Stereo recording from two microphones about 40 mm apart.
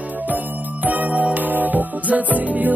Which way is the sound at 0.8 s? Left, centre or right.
Right.